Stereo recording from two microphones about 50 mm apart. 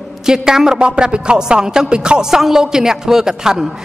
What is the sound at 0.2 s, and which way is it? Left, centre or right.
A man's voice, centre.